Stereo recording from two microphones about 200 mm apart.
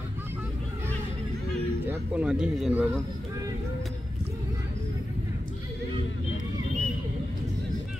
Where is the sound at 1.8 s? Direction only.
10° right (ahead or behind).